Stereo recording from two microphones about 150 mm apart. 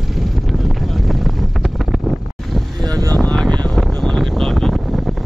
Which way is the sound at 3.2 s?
5° left (ahead or behind).